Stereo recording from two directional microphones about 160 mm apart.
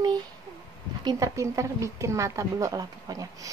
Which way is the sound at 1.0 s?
20° right (ahead or behind).